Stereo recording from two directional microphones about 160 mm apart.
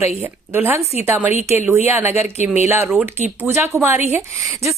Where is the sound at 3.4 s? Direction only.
15° right (ahead or behind).